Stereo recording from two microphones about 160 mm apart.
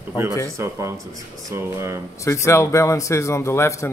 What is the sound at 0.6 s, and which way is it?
Speech, 15° right (ahead or behind).